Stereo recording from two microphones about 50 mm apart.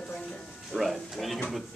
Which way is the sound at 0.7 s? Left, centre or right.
Centre.